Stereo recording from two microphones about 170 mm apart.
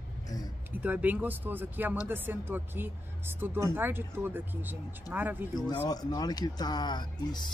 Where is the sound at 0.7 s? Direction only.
10° right (ahead or behind).